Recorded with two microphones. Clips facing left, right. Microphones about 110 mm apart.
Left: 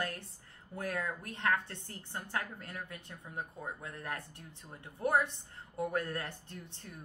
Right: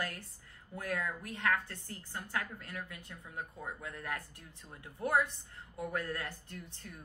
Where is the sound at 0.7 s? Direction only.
25° left (ahead or behind).